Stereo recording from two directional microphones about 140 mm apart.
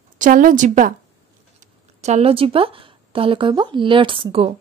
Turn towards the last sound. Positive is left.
turn(degrees=-40)  # may be behind; listen again after turning